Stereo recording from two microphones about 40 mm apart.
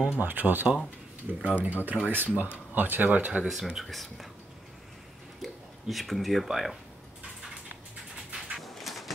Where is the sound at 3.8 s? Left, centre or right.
Centre.